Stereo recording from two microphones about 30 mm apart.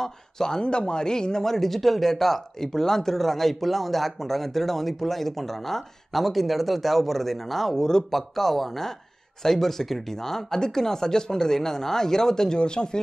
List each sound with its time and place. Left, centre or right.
0.0 s speech: centre
0.7 s speech: left; by 7.7 s centre
7.7 s speech: centre
8.1 s speech: centre
12.5 s speech: left